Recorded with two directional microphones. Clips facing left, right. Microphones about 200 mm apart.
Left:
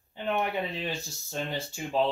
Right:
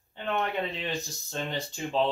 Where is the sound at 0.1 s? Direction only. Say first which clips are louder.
Left 1 dB; 10° left (ahead or behind).